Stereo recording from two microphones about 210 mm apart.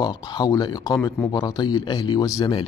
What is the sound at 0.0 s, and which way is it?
A man's voice, 20° left (ahead or behind).